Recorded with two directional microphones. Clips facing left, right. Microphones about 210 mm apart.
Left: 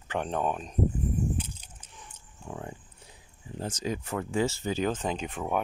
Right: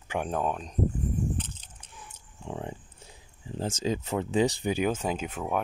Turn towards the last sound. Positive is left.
turn(degrees=0)  # may be behind; listen again after turning